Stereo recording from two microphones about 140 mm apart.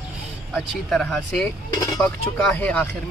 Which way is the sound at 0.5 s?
Centre (ahead or behind).